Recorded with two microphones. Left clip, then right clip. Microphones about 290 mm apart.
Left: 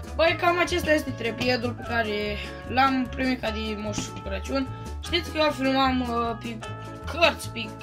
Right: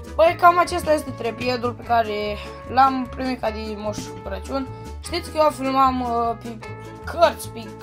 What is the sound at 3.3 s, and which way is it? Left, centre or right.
Speech, right.